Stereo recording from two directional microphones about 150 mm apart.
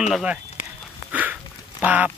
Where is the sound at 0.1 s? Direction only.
5° right (ahead or behind).